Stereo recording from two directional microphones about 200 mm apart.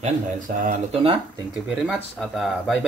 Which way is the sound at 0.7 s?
25° right (ahead or behind).